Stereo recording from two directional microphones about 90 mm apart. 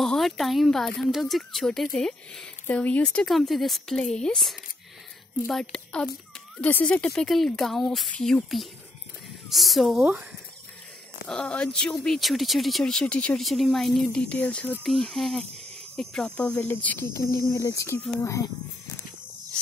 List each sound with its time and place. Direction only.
0.0 s speech: centre (ahead or behind)
11.2 s speech: 10° left (ahead or behind)
13.4 s speech: centre (ahead or behind)
14.9 s speech: centre (ahead or behind); by 17.0 s 20° left (ahead or behind)
17.1 s speech: 35° left (ahead or behind)